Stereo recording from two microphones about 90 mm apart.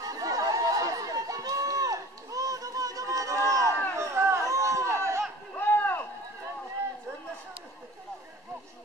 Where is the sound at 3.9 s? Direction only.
30° right (ahead or behind).